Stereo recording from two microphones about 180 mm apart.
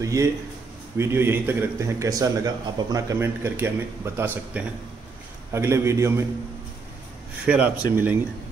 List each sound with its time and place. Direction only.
0.0 s a man's voice: 15° right (ahead or behind)
7.4 s a man's voice: 10° right (ahead or behind)